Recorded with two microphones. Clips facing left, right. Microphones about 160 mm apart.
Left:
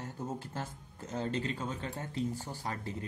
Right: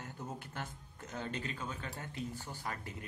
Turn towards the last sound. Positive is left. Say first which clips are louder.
# left 4 dB
turn(degrees=35)  # may be behind; listen again after turning